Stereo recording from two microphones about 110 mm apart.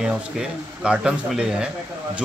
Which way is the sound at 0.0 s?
10° right (ahead or behind).